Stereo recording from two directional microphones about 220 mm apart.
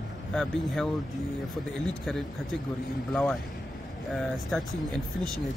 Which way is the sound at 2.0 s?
Centre (ahead or behind).